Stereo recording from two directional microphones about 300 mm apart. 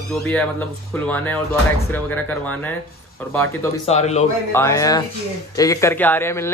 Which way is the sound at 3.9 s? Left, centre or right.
Left.